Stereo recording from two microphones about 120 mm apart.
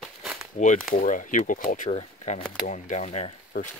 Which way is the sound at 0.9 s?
90° left.